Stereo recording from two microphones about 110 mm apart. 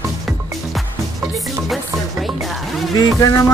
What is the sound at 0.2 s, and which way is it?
Music, centre (ahead or behind).